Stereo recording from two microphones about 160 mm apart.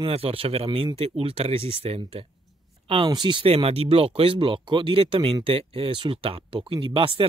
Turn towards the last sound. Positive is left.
turn(degrees=-35)  # may be behind; listen again after turning